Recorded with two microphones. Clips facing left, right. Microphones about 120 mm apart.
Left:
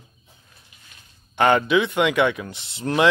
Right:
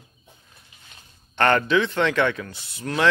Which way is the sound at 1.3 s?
10° left (ahead or behind).